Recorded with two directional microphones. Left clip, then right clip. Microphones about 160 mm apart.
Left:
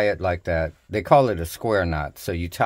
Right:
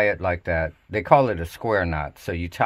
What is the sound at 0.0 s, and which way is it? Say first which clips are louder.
Speech: even; 40° left (ahead or behind).